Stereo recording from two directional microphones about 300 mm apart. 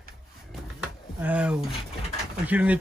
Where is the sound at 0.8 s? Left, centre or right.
Centre.